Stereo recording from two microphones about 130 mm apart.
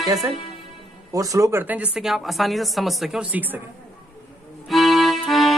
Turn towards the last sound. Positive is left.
turn(degrees=0)  # may be behind; listen again after turning